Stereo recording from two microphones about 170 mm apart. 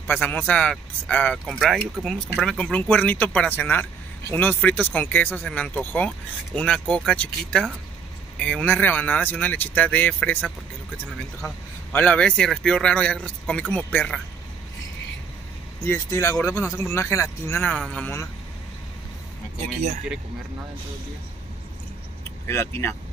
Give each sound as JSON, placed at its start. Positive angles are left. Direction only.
{"t": 0.0, "sound": "speech", "side_deg": 10}
{"t": 15.8, "sound": "speech", "side_deg": 15}
{"t": 17.6, "sound": "speech", "side_deg": 5}
{"t": 22.5, "sound": "speech", "side_deg": 15}